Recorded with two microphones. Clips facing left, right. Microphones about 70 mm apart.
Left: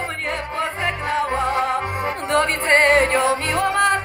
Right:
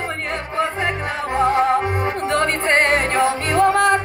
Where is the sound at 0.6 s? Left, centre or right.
Right.